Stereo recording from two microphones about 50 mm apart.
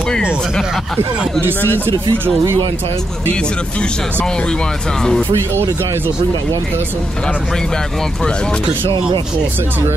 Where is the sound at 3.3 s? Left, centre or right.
Left.